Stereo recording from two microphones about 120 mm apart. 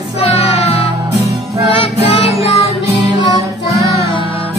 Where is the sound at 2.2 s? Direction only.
55° left (ahead or behind).